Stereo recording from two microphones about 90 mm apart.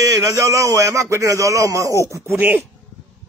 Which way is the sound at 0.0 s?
40° right (ahead or behind).